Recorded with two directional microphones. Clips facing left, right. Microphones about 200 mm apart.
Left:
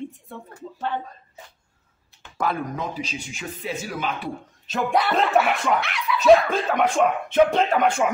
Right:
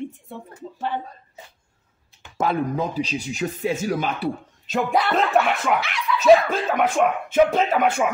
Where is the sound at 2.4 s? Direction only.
30° right (ahead or behind).